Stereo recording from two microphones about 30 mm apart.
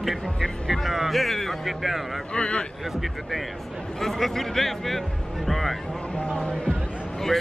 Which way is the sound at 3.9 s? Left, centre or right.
Centre.